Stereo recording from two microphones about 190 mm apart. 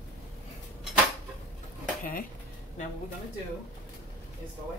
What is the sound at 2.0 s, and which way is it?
Speech, 50° left (ahead or behind).